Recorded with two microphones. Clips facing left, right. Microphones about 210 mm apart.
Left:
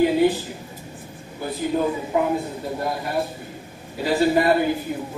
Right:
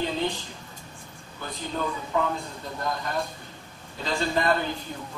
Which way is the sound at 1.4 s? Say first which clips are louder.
Left 9 dB; 10° left (ahead or behind).